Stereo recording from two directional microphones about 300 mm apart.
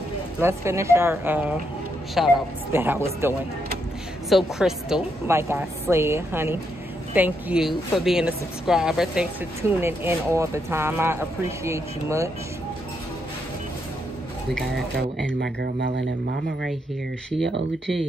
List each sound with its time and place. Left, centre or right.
0.4 s speech: centre
4.6 s speech: centre
15.4 s speech: right